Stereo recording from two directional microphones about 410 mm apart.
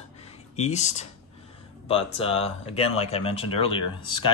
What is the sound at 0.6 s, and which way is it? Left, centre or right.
Speech, centre.